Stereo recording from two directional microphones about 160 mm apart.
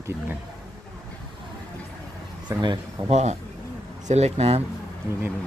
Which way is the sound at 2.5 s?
20° right (ahead or behind).